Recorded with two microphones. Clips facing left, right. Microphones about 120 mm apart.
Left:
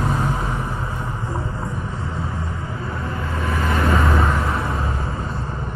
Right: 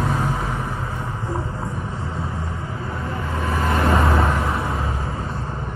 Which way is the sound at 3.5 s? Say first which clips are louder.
Right 1 dB; 25° right (ahead or behind).